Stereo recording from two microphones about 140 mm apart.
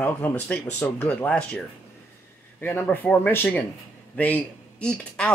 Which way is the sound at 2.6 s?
15° left (ahead or behind).